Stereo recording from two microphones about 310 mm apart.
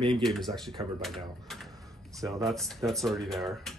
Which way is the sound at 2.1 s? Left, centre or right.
Centre.